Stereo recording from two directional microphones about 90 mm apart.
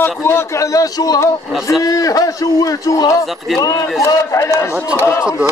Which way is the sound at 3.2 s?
Centre (ahead or behind).